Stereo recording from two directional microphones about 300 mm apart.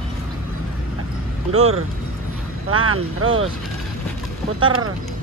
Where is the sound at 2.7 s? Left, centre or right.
Right.